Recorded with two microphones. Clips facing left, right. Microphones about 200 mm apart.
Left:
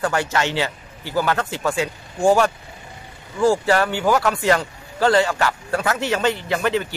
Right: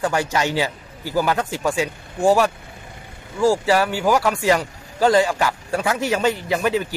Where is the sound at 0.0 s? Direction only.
15° right (ahead or behind).